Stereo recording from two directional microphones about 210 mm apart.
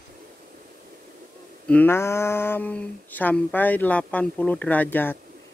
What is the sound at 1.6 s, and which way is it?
Speech, 10° left (ahead or behind).